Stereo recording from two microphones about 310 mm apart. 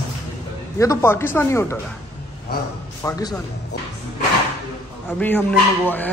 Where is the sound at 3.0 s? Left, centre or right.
Centre.